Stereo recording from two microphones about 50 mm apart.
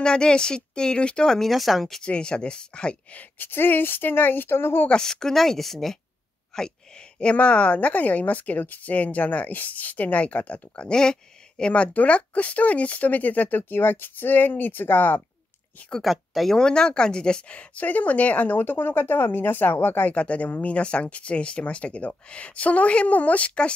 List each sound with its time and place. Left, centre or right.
0.0 s speech: centre
2.0 s speech: left
3.2 s speech: left
4.8 s speech: centre
7.2 s speech: left
10.9 s speech: centre; by 15.2 s left
16.0 s speech: centre
16.5 s speech: centre; by 20.1 s left
20.1 s speech: left